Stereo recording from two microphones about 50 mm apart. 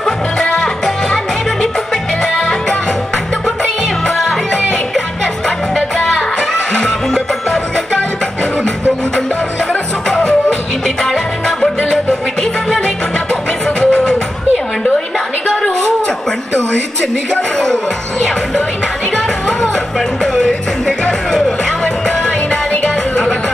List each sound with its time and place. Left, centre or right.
0.0 s music: centre
6.7 s music: centre
9.7 s music: centre
11.4 s music: centre
17.3 s a sound: centre
20.3 s music: centre; by 23.3 s left